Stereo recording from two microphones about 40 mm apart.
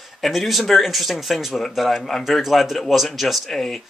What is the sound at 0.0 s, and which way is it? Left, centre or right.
Speech, centre.